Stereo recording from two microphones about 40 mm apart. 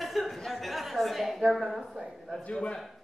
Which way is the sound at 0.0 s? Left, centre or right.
Centre.